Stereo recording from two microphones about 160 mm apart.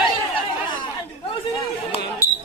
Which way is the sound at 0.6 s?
30° left (ahead or behind).